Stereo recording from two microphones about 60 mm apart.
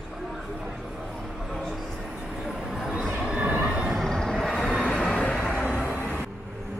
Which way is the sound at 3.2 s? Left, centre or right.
Centre.